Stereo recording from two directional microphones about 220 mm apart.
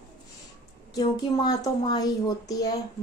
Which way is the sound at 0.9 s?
15° left (ahead or behind).